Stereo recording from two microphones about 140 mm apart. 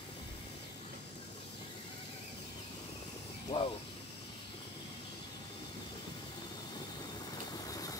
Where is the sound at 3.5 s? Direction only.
40° left (ahead or behind).